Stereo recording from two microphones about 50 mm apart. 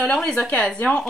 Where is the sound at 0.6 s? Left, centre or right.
Left.